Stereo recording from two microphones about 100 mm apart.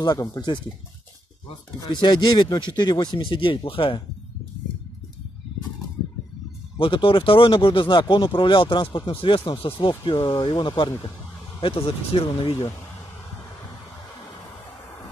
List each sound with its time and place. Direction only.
0.0 s speech: 40° left (ahead or behind)
1.9 s speech: 50° left (ahead or behind)
6.8 s speech: 60° left (ahead or behind)
11.6 s speech: 70° left (ahead or behind)